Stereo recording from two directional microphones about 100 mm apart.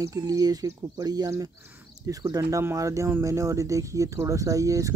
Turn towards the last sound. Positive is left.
turn(degrees=-35)  # may be behind; listen again after turning